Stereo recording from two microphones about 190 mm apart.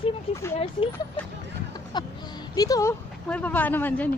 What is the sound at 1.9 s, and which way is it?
Speech, 25° left (ahead or behind).